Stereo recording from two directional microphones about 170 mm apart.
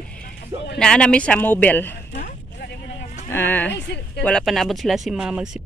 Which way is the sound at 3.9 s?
80° left.